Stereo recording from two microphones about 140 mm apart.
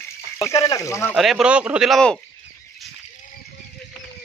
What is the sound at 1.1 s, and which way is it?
Speech, centre (ahead or behind).